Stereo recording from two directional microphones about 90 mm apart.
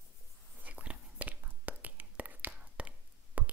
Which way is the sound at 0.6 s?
15° right (ahead or behind).